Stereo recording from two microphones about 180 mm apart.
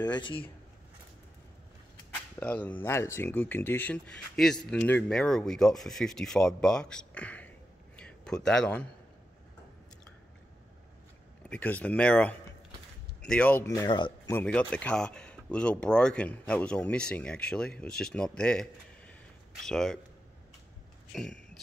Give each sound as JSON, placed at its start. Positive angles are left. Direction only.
{"t": 0.0, "sound": "speech", "side_deg": 25}
{"t": 2.4, "sound": "speech", "side_deg": 10}
{"t": 11.4, "sound": "speech", "side_deg": 5}
{"t": 14.2, "sound": "speech", "side_deg": 10}
{"t": 21.1, "sound": "a sound", "side_deg": 5}